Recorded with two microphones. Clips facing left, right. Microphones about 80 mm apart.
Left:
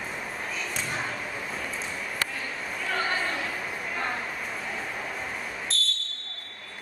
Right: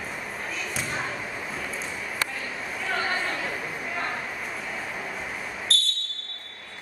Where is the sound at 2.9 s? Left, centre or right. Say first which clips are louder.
Right 1 dB; centre.